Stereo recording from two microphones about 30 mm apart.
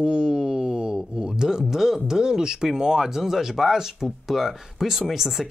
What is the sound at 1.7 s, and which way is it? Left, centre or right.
Speech, centre.